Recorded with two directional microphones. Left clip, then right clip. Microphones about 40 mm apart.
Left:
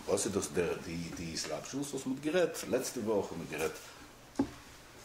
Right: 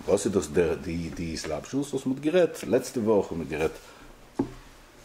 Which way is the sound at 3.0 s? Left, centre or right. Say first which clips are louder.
Right 9 dB; centre.